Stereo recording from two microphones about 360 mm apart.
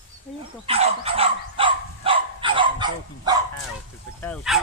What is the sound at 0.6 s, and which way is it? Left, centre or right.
Dog, centre.